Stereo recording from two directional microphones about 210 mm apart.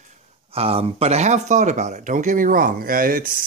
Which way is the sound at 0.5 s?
25° right (ahead or behind).